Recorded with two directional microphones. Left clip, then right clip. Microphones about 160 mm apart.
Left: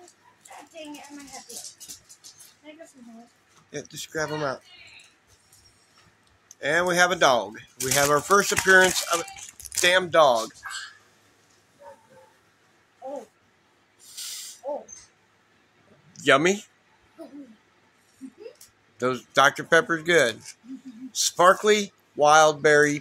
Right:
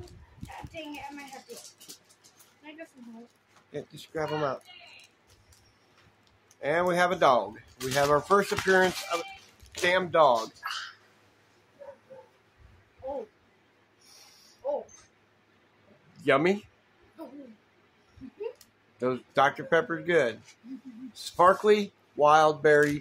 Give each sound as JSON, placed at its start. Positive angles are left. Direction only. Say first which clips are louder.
{"t": 3.7, "sound": "speech", "louder": "left 4 dB", "side_deg": 0}
{"t": 6.5, "sound": "speech", "louder": "left 3 dB", "side_deg": 0}
{"t": 16.2, "sound": "speech", "louder": "left 5 dB", "side_deg": 5}
{"t": 18.9, "sound": "speech", "louder": "left 4 dB", "side_deg": 5}